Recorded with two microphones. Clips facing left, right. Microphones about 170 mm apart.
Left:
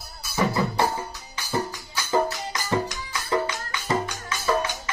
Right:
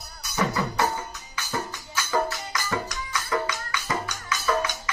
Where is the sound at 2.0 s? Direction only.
20° left (ahead or behind).